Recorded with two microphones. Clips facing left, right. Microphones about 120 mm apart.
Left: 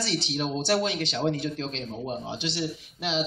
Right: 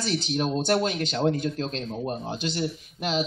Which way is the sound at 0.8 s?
45° right (ahead or behind).